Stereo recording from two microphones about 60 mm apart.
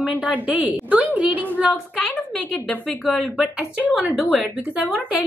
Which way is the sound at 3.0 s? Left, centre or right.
Centre.